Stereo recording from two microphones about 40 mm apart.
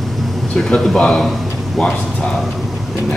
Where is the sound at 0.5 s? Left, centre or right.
Centre.